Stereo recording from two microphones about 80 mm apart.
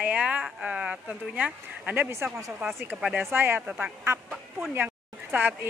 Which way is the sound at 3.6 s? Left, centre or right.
Centre.